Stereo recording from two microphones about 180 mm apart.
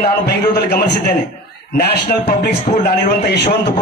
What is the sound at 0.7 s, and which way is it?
Speech, 60° left (ahead or behind).